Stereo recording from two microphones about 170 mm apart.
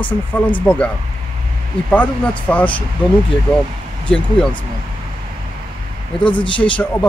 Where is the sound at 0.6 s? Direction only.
10° left (ahead or behind).